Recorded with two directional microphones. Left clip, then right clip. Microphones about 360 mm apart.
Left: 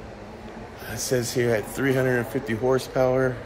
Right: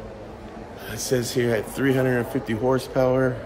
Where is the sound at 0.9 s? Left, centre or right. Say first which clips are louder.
Right 1 dB; centre.